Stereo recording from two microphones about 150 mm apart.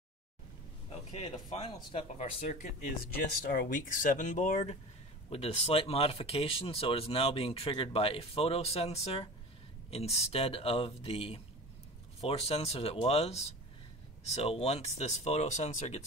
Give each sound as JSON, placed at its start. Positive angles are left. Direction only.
{"t": 1.5, "sound": "speech", "side_deg": 35}
{"t": 2.4, "sound": "speech", "side_deg": 55}
{"t": 5.3, "sound": "speech", "side_deg": 40}